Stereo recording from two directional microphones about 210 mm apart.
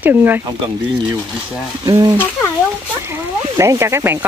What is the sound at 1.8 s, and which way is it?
Speech, 15° right (ahead or behind).